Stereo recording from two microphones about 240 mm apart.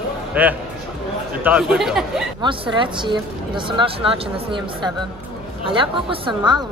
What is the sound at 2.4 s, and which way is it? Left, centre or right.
Speech, centre.